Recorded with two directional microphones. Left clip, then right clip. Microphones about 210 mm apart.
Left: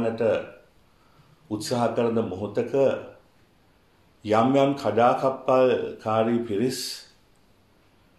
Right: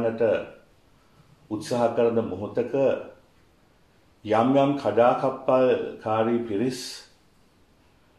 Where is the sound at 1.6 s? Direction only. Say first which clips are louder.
Right 2 dB; 45° left (ahead or behind).